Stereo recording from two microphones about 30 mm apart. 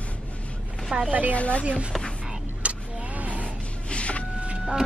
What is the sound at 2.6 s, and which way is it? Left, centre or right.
Vehicle, right.